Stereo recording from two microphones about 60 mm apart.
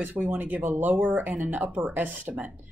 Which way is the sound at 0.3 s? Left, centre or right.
Right.